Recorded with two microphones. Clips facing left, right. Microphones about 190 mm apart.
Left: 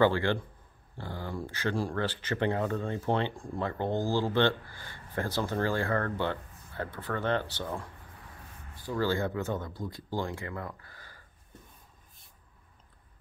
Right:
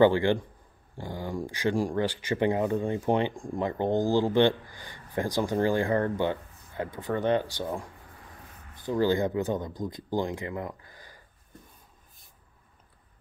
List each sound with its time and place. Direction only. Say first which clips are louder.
0.0 s speech: right 4 dB; 15° right (ahead or behind)